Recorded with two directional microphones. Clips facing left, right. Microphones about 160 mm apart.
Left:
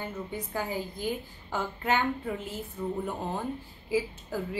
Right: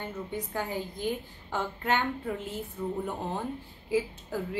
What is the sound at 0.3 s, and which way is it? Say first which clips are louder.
A woman's voice: right 1 dB; 5° left (ahead or behind).